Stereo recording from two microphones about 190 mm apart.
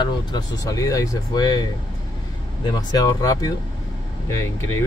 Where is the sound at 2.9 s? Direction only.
20° left (ahead or behind).